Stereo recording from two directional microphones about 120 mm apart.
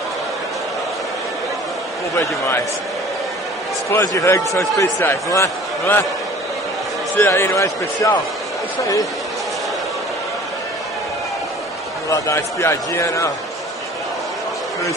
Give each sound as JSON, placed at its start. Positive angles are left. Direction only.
{"t": 3.9, "sound": "speech", "side_deg": 25}
{"t": 7.2, "sound": "speech", "side_deg": 20}
{"t": 12.1, "sound": "speech", "side_deg": 25}